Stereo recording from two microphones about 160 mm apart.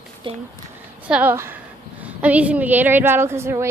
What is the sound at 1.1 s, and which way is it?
A woman's voice, 10° right (ahead or behind).